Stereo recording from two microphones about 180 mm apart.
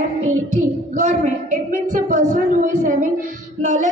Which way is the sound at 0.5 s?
45° right (ahead or behind).